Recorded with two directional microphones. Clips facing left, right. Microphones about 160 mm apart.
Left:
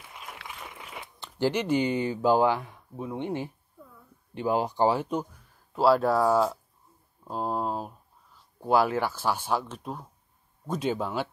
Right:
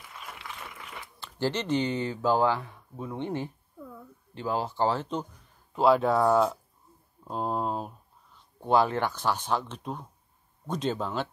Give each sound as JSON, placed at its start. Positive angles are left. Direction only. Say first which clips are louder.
{"t": 0.7, "sound": "speech", "louder": "left 1 dB", "side_deg": 20}